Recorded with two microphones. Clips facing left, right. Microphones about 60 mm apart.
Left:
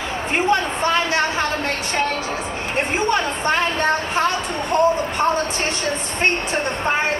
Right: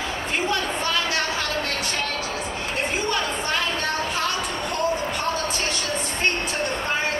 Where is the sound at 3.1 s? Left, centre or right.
Left.